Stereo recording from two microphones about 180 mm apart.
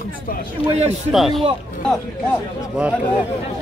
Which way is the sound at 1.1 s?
Centre (ahead or behind).